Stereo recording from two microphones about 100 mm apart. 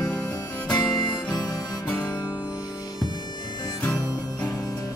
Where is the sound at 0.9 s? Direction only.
45° left (ahead or behind).